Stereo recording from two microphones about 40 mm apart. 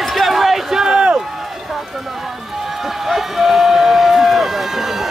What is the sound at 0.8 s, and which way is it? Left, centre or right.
Run, right.